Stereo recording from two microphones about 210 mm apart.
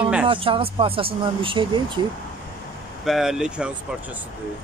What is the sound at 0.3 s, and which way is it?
Speech, 25° right (ahead or behind).